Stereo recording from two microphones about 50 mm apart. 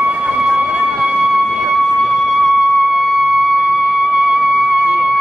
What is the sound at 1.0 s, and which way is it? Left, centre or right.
Music, centre.